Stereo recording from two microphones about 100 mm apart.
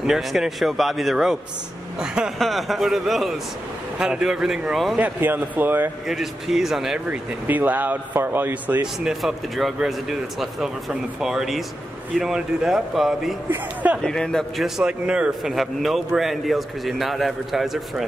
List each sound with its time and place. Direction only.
0.0 s a man's voice: 5° right (ahead or behind)
4.9 s speech: 20° right (ahead or behind)
6.0 s a man's voice: 5° right (ahead or behind)
7.1 s speech: 15° right (ahead or behind)
9.0 s a man's voice: centre (ahead or behind)
14.8 s a man's voice: 10° right (ahead or behind)